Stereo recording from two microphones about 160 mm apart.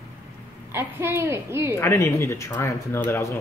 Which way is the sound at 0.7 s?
15° right (ahead or behind).